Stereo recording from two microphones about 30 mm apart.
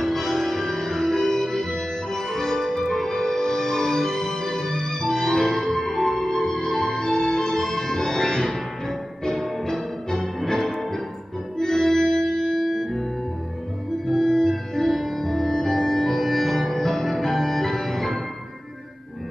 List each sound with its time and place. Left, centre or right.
0.0 s music: centre
11.5 s organ: centre